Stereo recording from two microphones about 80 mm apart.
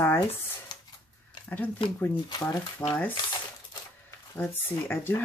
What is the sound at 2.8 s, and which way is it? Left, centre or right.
Speech, left.